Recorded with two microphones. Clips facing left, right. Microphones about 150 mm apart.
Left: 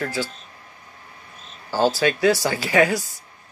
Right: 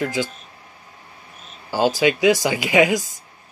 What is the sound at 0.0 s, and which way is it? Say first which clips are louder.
Speech: right 3 dB; 15° right (ahead or behind).